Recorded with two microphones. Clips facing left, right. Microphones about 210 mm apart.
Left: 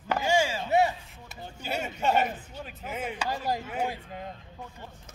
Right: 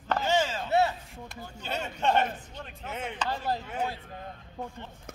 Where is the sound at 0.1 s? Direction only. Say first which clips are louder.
Left 1 dB; 10° left (ahead or behind).